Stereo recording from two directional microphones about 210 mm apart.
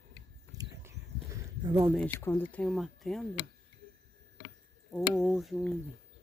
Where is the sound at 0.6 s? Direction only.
15° right (ahead or behind).